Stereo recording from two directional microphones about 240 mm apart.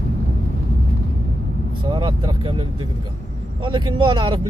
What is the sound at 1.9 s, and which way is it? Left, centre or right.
Vehicle, centre.